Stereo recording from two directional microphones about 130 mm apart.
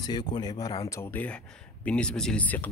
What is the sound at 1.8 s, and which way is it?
Speech, 5° left (ahead or behind).